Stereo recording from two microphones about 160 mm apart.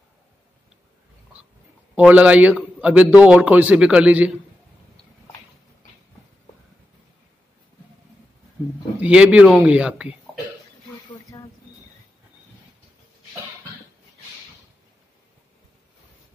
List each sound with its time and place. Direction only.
2.0 s a man's voice: 10° right (ahead or behind)
9.0 s a man's voice: 5° right (ahead or behind)
11.3 s a sound: 25° left (ahead or behind)